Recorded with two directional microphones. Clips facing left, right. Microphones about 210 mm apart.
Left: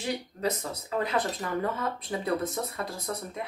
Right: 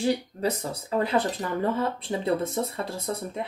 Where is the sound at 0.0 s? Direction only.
30° right (ahead or behind).